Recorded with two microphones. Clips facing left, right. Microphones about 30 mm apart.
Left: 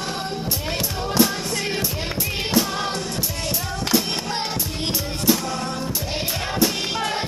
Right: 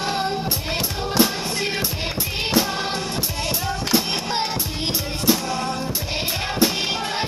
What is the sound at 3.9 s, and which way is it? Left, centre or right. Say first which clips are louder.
Music: even; right.